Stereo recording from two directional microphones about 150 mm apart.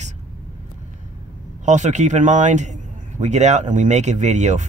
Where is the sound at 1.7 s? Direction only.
55° right (ahead or behind).